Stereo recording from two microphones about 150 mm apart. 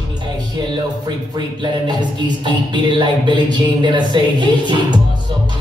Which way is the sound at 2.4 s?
30° right (ahead or behind).